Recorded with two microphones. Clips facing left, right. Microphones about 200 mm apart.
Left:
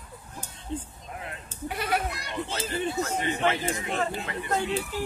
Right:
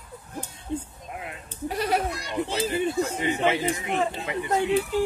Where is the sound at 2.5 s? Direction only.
15° right (ahead or behind).